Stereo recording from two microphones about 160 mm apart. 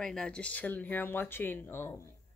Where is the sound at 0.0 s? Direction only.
5° left (ahead or behind).